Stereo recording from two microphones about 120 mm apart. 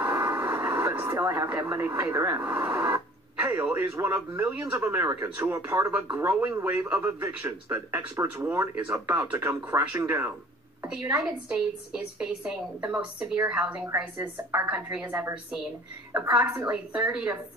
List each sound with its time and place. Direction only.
0.0 s radio: 20° right (ahead or behind)
3.8 s a woman's voice: 20° right (ahead or behind)